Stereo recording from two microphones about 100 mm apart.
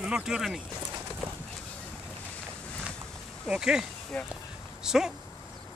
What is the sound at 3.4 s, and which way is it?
Speech, 10° right (ahead or behind).